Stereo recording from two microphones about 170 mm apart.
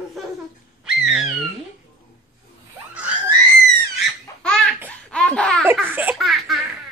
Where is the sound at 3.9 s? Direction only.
5° left (ahead or behind).